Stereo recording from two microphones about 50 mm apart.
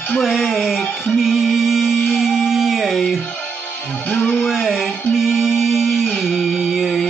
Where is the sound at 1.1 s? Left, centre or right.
Centre.